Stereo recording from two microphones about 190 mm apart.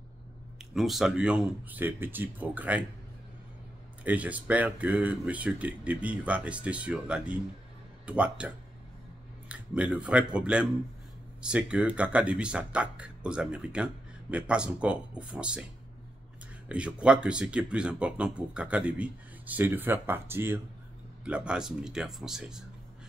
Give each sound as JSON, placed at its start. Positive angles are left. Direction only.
{"t": 0.7, "sound": "speech", "side_deg": 0}
{"t": 4.0, "sound": "speech", "side_deg": -10}
{"t": 16.6, "sound": "speech", "side_deg": -5}